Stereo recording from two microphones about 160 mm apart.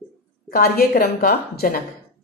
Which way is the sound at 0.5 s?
75° left (ahead or behind).